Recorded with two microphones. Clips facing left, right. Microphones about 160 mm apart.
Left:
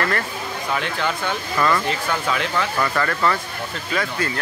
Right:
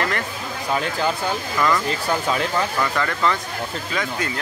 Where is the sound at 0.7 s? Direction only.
35° right (ahead or behind).